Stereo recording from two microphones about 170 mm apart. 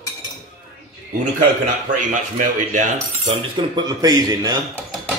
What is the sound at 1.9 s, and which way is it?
Cutlery, 50° right (ahead or behind).